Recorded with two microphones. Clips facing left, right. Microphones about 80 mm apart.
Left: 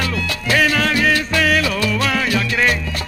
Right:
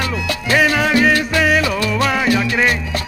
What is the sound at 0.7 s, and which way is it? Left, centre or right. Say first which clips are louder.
Music: right 3 dB; centre.